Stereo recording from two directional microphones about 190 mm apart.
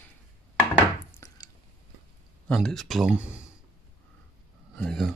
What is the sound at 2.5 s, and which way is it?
Speech, centre (ahead or behind).